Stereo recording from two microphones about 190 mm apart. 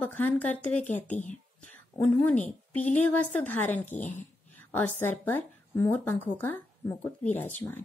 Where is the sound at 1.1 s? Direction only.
40° left (ahead or behind).